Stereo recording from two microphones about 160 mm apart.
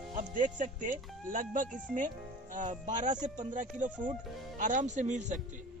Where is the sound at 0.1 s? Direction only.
60° right (ahead or behind).